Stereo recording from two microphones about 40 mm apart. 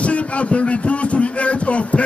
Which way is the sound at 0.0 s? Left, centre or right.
Left.